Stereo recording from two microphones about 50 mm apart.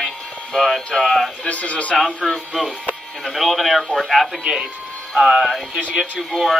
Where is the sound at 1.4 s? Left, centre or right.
Left.